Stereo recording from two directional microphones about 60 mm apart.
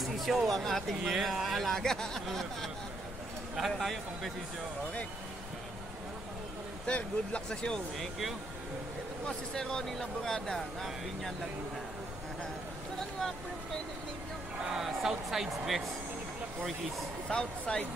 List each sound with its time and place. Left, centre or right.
0.0 s speech: centre
6.9 s speech: left
9.5 s speech: centre
14.6 s speech: centre
17.3 s speech: centre